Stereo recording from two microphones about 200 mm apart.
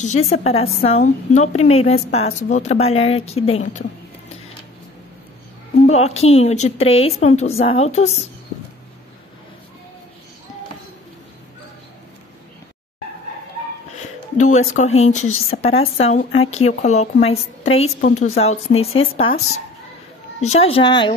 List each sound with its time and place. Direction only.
0.0 s speech: 35° left (ahead or behind)
5.9 s speech: 35° left (ahead or behind)
13.9 s music: 35° left (ahead or behind)
14.8 s a woman's voice: 35° left (ahead or behind)
20.3 s a woman's voice: 30° left (ahead or behind)